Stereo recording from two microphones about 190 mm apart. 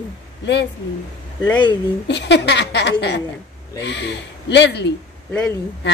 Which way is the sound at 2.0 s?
65° left (ahead or behind).